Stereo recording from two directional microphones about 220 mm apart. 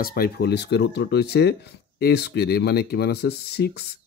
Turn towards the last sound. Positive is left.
turn(degrees=45)  # may be behind; listen again after turning